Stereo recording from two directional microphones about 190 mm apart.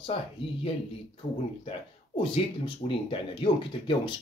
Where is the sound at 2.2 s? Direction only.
25° left (ahead or behind).